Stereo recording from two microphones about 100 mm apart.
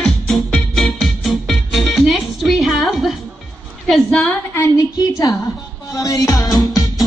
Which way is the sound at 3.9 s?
5° left (ahead or behind).